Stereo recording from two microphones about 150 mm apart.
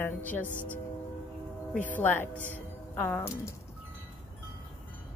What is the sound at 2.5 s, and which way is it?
Music, 10° left (ahead or behind).